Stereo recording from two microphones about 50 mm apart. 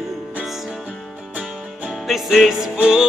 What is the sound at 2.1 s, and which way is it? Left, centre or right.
Music, centre.